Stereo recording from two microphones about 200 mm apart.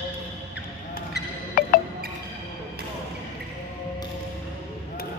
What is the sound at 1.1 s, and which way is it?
Music, 45° left (ahead or behind).